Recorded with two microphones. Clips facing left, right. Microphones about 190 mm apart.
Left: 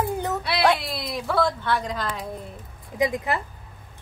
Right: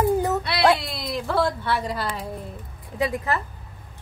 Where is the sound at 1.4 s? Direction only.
10° right (ahead or behind).